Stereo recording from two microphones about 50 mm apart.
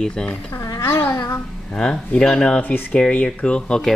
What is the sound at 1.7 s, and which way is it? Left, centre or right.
Speech, centre.